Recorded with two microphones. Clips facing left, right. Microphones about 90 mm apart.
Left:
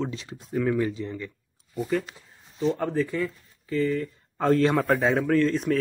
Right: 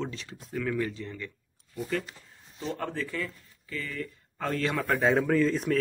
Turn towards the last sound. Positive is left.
turn(degrees=0)  # may be behind; listen again after turning